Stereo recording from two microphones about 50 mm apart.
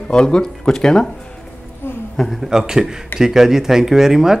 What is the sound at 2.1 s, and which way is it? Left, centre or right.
Speech, centre.